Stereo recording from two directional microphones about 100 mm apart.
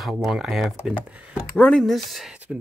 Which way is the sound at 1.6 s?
15° left (ahead or behind).